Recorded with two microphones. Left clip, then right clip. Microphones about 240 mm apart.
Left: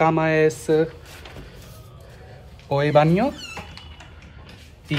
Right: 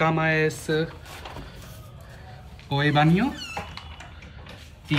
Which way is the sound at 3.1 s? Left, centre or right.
Centre.